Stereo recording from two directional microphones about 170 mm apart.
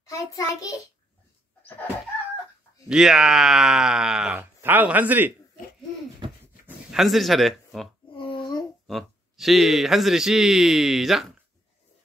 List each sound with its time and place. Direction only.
0.0 s a child's voice: 20° left (ahead or behind)
2.9 s speech: 5° right (ahead or behind)
6.6 s speech: centre (ahead or behind)
8.2 s a sound: 25° left (ahead or behind)
8.8 s speech: centre (ahead or behind)